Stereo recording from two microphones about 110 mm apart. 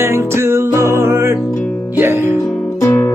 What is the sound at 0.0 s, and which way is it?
Music, 25° right (ahead or behind).